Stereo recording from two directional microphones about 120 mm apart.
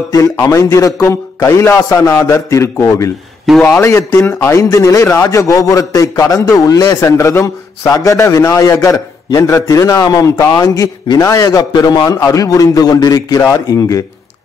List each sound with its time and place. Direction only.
0.1 s a man's voice: 30° left (ahead or behind)